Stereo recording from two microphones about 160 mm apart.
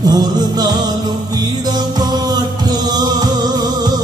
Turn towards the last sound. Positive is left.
turn(degrees=-25)  # may be behind; listen again after turning